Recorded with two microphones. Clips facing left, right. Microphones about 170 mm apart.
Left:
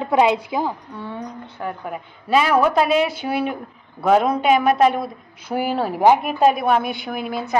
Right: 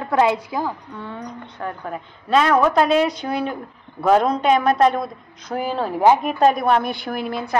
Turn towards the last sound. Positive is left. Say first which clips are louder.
# even
turn(degrees=0)  # may be behind; listen again after turning